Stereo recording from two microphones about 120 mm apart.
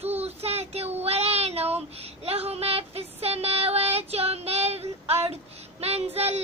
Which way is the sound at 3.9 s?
60° right (ahead or behind).